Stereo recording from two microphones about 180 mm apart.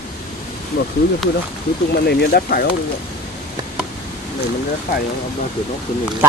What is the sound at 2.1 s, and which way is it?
Speech, 60° left (ahead or behind).